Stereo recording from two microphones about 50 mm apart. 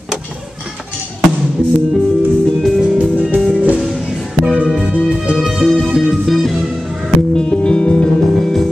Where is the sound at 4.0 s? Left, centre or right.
Centre.